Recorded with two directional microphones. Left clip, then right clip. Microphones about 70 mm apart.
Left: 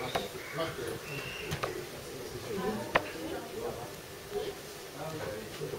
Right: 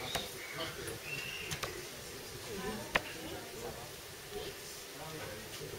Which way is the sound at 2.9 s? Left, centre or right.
Centre.